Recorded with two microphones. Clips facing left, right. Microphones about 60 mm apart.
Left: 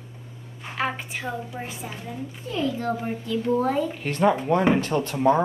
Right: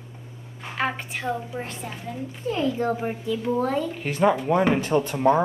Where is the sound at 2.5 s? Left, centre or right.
Right; by 4.0 s centre.